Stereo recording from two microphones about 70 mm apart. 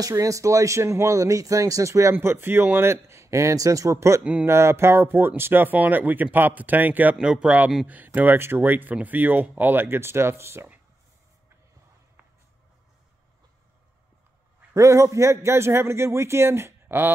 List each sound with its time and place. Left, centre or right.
0.2 s speech: right
2.1 s a man's voice: right
7.2 s a man's voice: centre; by 10.7 s right
14.7 s a man's voice: right